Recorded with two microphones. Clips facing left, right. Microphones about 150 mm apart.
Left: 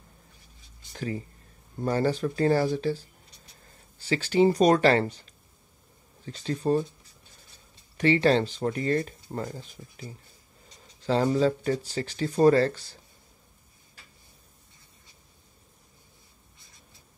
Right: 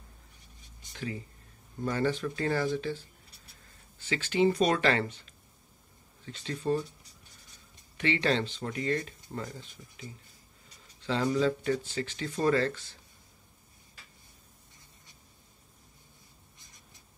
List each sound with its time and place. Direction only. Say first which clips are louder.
0.9 s speech: left 5 dB; 40° left (ahead or behind)
8.0 s speech: left 7 dB; 40° left (ahead or behind)